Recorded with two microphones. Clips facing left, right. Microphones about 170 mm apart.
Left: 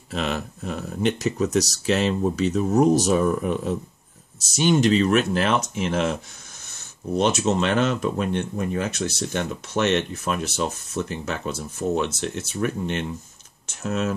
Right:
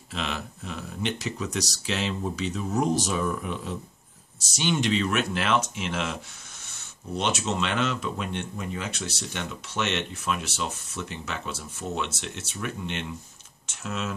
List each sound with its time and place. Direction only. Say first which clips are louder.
0.1 s speech: left 6 dB; 45° left (ahead or behind)
7.2 s speech: left 7 dB; 40° left (ahead or behind)